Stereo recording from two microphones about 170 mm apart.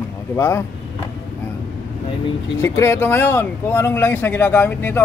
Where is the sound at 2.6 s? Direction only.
15° left (ahead or behind).